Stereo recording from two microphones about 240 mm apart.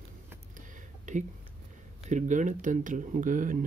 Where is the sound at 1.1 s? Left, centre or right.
Right.